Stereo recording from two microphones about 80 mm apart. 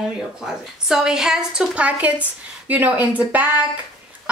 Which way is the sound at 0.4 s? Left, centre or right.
Centre.